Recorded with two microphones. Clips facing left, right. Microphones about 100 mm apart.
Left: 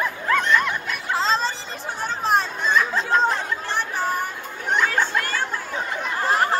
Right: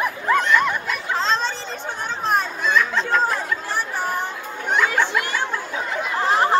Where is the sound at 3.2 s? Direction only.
10° right (ahead or behind).